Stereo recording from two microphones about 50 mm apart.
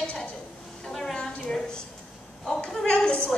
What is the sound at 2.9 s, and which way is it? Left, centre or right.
Speech, left.